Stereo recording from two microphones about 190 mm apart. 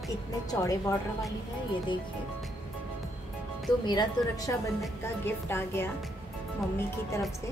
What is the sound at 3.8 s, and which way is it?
A woman's voice, 20° left (ahead or behind).